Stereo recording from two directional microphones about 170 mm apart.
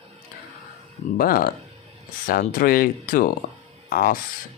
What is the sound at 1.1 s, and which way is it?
Speech, 60° left (ahead or behind).